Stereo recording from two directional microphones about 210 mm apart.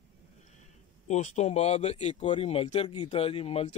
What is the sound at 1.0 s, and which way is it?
Speech, 35° left (ahead or behind).